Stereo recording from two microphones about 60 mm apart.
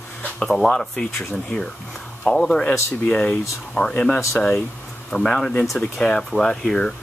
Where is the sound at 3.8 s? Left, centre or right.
Left.